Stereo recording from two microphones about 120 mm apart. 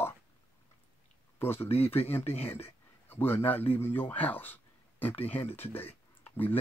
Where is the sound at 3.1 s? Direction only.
15° left (ahead or behind).